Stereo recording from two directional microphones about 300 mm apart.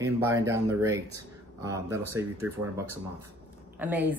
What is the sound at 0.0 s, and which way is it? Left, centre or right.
A woman's voice, centre.